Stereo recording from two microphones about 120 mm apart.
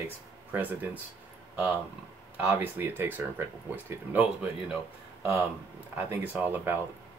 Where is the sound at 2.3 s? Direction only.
15° right (ahead or behind).